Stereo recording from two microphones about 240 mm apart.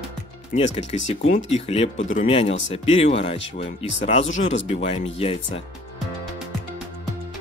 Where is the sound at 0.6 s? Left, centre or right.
Left.